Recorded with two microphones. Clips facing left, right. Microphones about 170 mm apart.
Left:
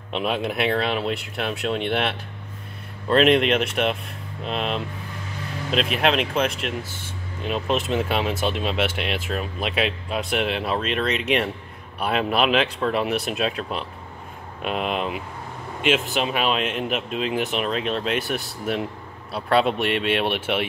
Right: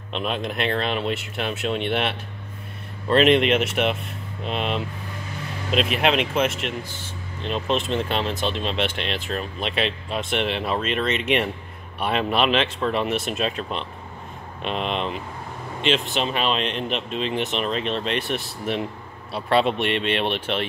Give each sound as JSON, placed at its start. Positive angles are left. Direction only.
{"t": 0.1, "sound": "speech", "side_deg": 5}